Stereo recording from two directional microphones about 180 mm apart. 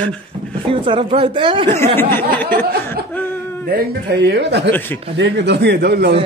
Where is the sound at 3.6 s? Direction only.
60° right (ahead or behind).